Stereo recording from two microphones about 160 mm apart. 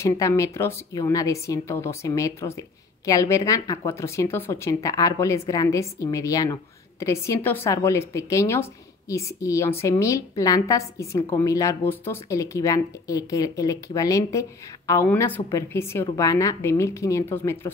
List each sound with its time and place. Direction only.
0.0 s a woman's voice: 20° left (ahead or behind)